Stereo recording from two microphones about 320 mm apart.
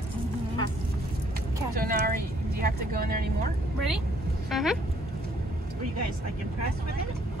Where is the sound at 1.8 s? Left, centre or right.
Right.